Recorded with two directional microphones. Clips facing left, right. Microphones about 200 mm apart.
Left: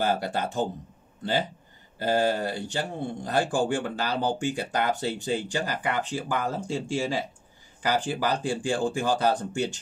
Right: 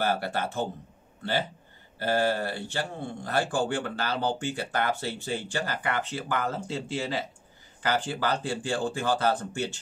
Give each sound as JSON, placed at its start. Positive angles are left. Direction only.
{"t": 0.0, "sound": "speech", "side_deg": 15}
{"t": 2.0, "sound": "speech", "side_deg": 15}